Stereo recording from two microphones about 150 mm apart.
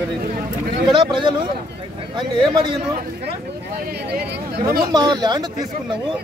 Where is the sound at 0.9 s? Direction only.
35° right (ahead or behind).